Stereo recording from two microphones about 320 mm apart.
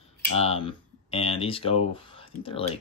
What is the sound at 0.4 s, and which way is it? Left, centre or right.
Speech, centre.